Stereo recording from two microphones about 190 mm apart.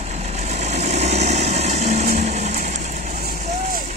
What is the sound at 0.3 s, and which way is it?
Vehicle, 35° right (ahead or behind).